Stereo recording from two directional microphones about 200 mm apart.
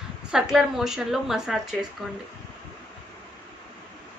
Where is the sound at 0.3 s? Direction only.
5° right (ahead or behind).